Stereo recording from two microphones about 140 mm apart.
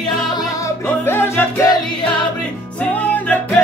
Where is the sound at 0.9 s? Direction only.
15° left (ahead or behind).